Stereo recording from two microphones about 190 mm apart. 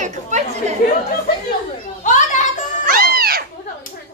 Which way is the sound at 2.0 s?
40° left (ahead or behind).